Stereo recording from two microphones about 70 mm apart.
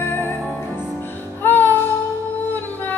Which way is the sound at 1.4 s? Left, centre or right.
Left.